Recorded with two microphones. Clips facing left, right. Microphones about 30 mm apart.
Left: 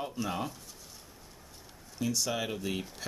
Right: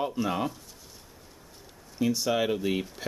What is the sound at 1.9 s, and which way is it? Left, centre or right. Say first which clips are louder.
Speech: right 6 dB; right.